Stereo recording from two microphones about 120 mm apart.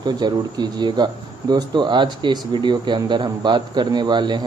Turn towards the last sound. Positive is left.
turn(degrees=-40)  # may be behind; listen again after turning